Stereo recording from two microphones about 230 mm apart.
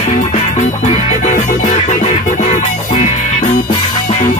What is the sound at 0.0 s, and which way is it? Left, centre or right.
Music, left.